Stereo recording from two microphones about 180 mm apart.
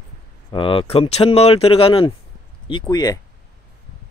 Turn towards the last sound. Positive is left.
turn(degrees=20)  # may be behind; listen again after turning